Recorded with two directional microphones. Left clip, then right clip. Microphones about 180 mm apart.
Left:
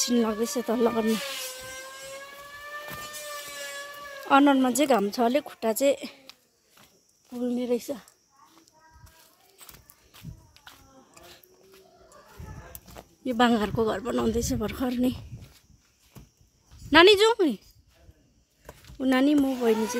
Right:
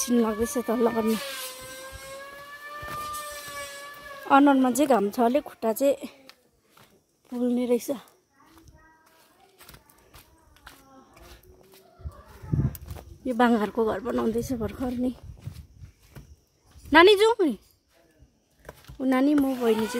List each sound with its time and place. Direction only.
0.0 s a woman's voice: 5° right (ahead or behind)
4.3 s a woman's voice: 5° right (ahead or behind)
7.2 s speech: 20° right (ahead or behind)
13.2 s a woman's voice: 5° right (ahead or behind)
16.9 s a woman's voice: 5° right (ahead or behind)
18.7 s speech: centre (ahead or behind)